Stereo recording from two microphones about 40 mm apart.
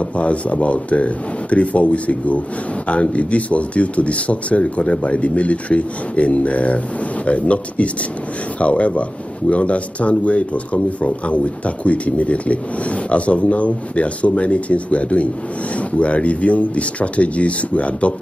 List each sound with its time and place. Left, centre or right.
0.1 s speech: left